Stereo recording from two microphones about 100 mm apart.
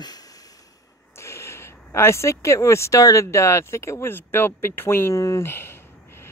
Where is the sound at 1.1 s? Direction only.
25° left (ahead or behind).